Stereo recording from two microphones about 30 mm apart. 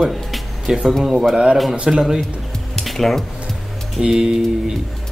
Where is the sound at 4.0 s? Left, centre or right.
Right.